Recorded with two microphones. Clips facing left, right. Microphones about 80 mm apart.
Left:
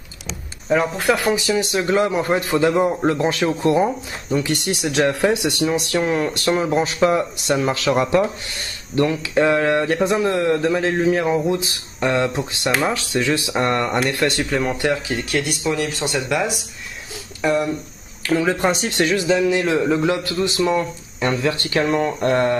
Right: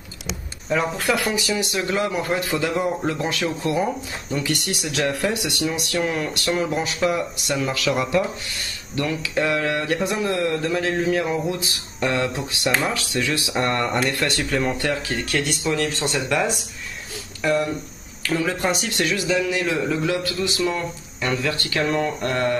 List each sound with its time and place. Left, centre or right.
1.2 s a man's voice: left
10.3 s speech: centre
10.6 s a man's voice: left
15.3 s speech: centre
17.4 s a man's voice: centre
21.8 s speech: centre
22.2 s a man's voice: left